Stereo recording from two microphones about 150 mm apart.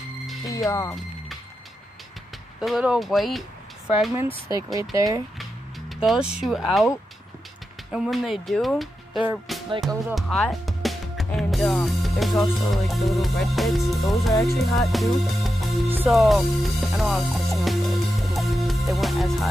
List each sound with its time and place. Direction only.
0.5 s speech: 20° left (ahead or behind)
2.6 s speech: 5° right (ahead or behind)
4.7 s speech: 25° right (ahead or behind)
5.4 s music: centre (ahead or behind)
7.9 s speech: centre (ahead or behind)
9.5 s music: centre (ahead or behind)
10.1 s speech: centre (ahead or behind)
14.4 s music: centre (ahead or behind)